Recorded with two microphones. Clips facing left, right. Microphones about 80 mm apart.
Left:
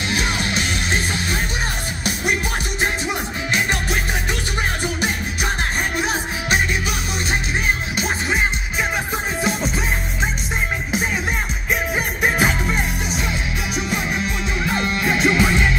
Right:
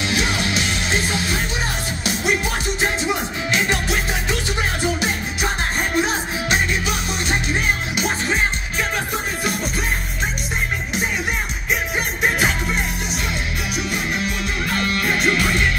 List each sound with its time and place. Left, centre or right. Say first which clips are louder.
0.0 s music: right 1 dB; left
3.5 s music: even; left
6.5 s music: left 1 dB; right
11.7 s music: left 1 dB; centre
14.2 s music: left 1 dB; centre